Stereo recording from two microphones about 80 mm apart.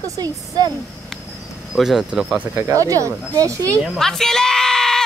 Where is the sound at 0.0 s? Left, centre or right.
Right.